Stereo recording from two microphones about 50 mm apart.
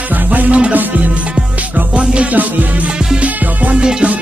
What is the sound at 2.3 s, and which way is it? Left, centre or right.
Music, right.